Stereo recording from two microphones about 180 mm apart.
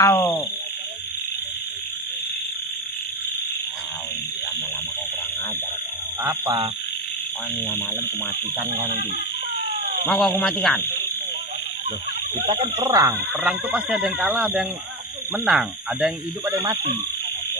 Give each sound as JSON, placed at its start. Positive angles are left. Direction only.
{"t": 0.0, "sound": "a sound", "side_deg": 15}
{"t": 6.2, "sound": "speech", "side_deg": -20}
{"t": 10.0, "sound": "speech", "side_deg": 0}
{"t": 12.4, "sound": "speech", "side_deg": -35}
{"t": 12.7, "sound": "speech", "side_deg": -20}
{"t": 13.3, "sound": "speech", "side_deg": -5}